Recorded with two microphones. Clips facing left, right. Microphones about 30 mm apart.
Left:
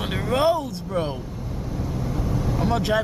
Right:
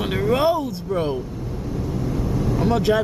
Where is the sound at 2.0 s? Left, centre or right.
Centre.